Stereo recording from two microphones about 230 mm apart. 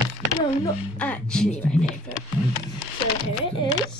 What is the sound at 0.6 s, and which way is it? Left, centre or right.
Speech, centre.